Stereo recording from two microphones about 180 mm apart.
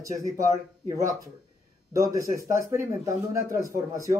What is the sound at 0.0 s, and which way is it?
Speech, 15° right (ahead or behind).